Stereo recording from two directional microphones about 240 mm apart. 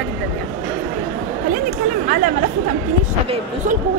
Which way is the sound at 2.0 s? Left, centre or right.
Right.